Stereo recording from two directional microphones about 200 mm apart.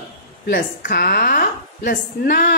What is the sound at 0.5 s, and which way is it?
A woman's voice, 50° left (ahead or behind).